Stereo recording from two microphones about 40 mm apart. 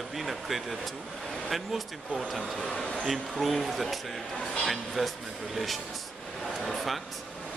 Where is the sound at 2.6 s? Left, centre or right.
Centre.